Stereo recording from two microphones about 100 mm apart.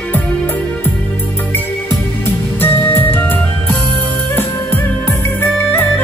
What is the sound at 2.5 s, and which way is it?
Music, 20° left (ahead or behind).